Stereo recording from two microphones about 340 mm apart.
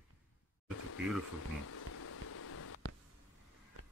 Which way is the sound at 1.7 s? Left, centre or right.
Left.